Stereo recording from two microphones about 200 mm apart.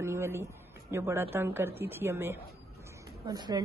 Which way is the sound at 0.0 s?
15° right (ahead or behind).